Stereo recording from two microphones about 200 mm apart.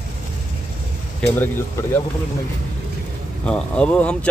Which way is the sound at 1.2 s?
5° left (ahead or behind).